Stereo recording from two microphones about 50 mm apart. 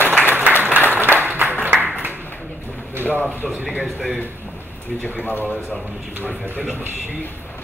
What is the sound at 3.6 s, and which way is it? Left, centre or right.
Speech, left.